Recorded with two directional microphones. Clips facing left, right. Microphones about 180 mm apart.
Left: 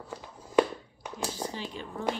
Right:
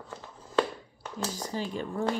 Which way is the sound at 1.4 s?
45° right (ahead or behind).